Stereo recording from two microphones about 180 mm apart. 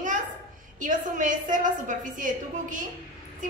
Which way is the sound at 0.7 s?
45° right (ahead or behind).